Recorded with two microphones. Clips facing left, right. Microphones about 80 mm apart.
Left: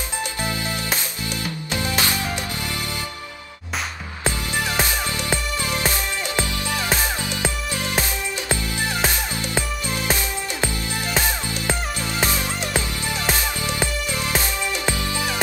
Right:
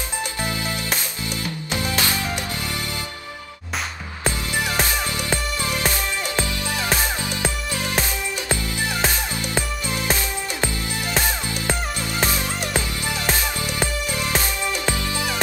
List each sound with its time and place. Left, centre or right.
0.4 s music: left
4.8 s music: left
14.4 s music: left